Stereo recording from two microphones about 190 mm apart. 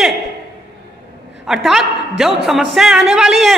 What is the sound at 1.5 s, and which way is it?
A woman's voice, centre (ahead or behind).